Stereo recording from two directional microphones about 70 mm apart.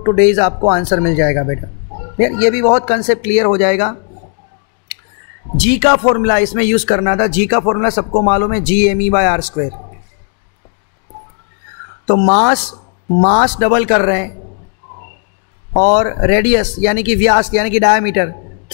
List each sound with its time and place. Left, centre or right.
0.2 s speech: centre
5.6 s speech: left
12.1 s speech: left
15.7 s speech: left